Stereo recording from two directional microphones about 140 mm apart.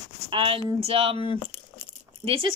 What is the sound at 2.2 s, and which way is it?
Speech, 40° right (ahead or behind).